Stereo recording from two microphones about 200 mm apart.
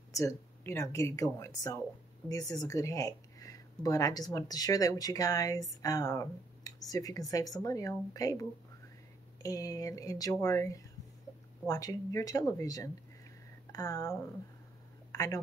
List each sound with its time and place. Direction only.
0.1 s a woman's voice: 15° left (ahead or behind)